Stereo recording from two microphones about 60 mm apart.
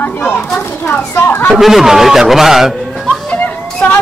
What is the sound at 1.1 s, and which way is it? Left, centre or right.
Speech, left.